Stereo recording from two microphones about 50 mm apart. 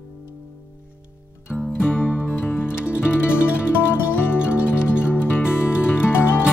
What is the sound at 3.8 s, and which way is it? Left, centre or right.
Music, left.